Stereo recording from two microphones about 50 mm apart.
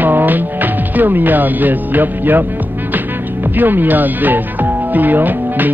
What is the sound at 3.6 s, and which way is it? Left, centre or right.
Speech, right.